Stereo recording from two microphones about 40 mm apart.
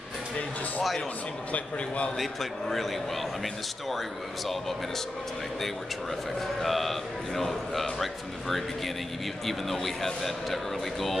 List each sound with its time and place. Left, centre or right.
1.5 s a man's voice: left
6.4 s speech: centre